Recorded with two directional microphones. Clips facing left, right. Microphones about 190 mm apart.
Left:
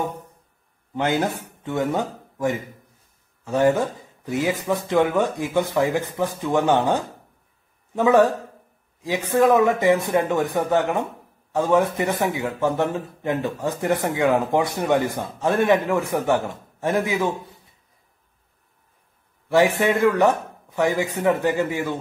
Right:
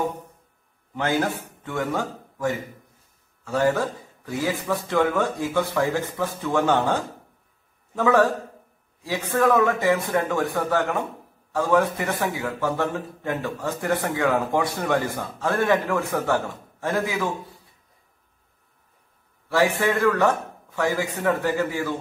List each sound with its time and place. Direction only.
0.9 s a man's voice: 20° left (ahead or behind)
19.5 s a man's voice: 20° left (ahead or behind)